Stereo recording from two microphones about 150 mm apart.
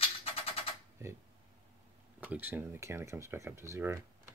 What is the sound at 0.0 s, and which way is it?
Music, 40° left (ahead or behind).